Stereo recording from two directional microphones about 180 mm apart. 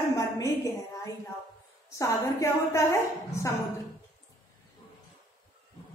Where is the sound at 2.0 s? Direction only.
15° left (ahead or behind).